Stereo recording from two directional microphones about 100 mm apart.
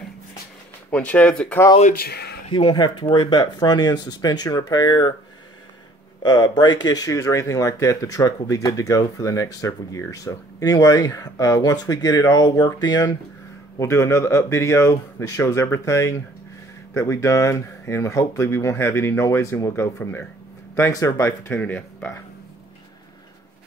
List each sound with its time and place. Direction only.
0.9 s speech: 15° left (ahead or behind)
2.5 s speech: 50° left (ahead or behind)
6.2 s speech: 45° left (ahead or behind)
13.7 s speech: 30° left (ahead or behind)
20.9 s speech: 35° left (ahead or behind)
21.5 s speech: 15° left (ahead or behind)